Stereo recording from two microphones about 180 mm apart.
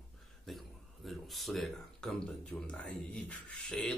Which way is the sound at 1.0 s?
Centre (ahead or behind).